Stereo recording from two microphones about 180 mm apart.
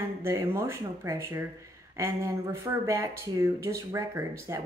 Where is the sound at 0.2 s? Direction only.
15° right (ahead or behind).